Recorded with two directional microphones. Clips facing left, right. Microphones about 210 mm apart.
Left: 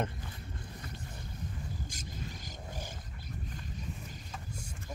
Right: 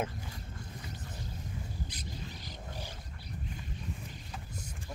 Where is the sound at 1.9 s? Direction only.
45° left (ahead or behind).